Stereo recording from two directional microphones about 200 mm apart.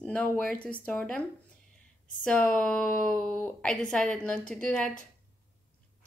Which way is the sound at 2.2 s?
5° left (ahead or behind).